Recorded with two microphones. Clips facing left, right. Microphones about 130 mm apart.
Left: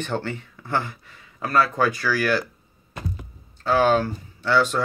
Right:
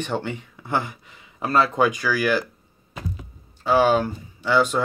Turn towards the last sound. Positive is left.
turn(degrees=-10)  # may be behind; listen again after turning